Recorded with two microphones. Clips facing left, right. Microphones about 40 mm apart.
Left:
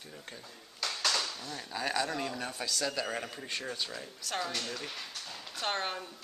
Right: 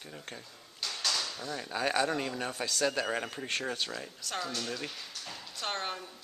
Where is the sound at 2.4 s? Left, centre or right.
Right.